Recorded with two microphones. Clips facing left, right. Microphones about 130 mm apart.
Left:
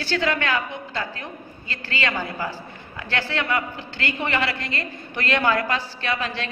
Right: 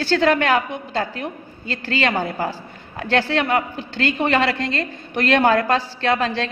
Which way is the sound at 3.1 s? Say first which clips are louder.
Right 6 dB; 30° right (ahead or behind).